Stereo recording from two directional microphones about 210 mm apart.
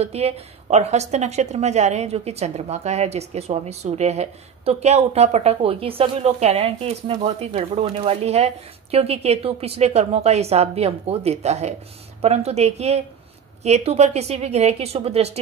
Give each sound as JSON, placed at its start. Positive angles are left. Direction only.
{"t": 0.0, "sound": "speech", "side_deg": -30}